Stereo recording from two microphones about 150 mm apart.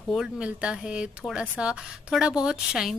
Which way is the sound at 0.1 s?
5° right (ahead or behind).